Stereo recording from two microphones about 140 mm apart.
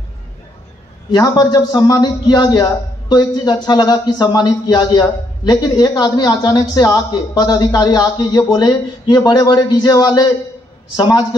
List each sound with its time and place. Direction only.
1.1 s a man's voice: 30° left (ahead or behind)